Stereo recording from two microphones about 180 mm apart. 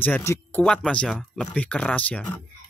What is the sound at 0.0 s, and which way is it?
Speech, 15° left (ahead or behind).